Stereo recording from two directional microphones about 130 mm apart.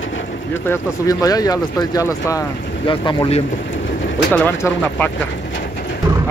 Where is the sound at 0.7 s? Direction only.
25° left (ahead or behind).